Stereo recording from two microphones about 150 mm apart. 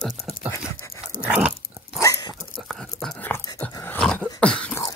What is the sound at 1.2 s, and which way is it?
Dog, 5° right (ahead or behind).